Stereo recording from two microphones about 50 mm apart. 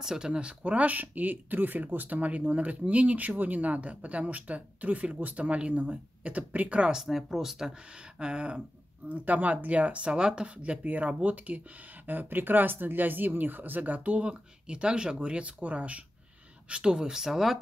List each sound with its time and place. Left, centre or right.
0.0 s speech: centre; by 6.9 s right
6.9 s speech: centre
7.9 s speech: centre
9.1 s speech: right; by 17.6 s centre